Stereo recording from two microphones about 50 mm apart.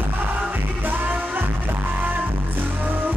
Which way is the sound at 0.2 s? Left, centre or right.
Right.